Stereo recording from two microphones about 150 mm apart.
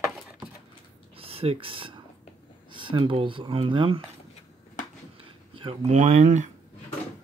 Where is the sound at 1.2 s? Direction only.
40° right (ahead or behind).